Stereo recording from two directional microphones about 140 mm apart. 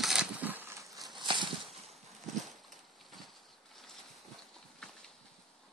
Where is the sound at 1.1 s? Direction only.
35° right (ahead or behind).